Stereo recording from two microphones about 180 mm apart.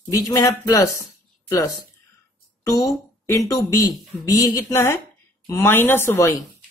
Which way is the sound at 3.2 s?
15° left (ahead or behind).